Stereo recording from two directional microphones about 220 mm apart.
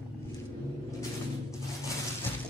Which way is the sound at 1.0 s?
15° left (ahead or behind).